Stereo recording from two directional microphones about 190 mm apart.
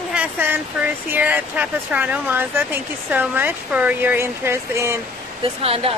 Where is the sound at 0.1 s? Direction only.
10° right (ahead or behind).